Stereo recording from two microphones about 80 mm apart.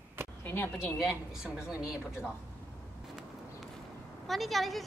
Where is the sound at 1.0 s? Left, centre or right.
Centre.